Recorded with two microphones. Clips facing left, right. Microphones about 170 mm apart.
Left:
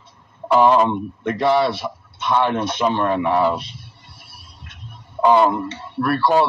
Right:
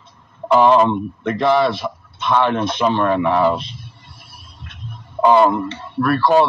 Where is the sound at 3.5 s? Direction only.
20° right (ahead or behind).